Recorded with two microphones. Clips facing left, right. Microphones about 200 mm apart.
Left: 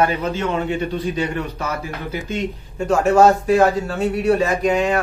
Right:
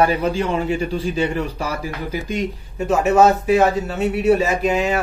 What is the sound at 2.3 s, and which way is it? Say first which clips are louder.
A man's voice: right 1 dB; 10° right (ahead or behind).